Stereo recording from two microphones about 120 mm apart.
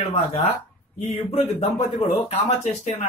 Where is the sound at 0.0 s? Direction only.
60° left (ahead or behind); by 3.1 s 80° left.